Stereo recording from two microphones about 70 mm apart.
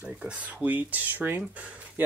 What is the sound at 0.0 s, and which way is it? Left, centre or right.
Speech, centre.